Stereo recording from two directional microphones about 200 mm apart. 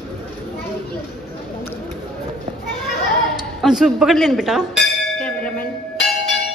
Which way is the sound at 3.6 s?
Centre (ahead or behind).